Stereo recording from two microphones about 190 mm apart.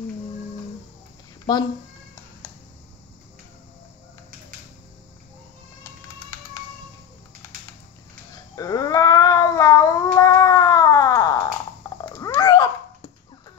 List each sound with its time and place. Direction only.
1.5 s speech: 20° left (ahead or behind)
8.5 s a sound: 20° left (ahead or behind)
12.0 s cat: 10° left (ahead or behind)